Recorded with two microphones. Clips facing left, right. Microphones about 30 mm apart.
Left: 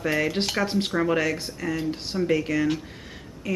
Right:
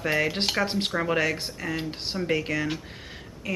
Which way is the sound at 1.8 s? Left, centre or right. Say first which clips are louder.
Left 4 dB; right.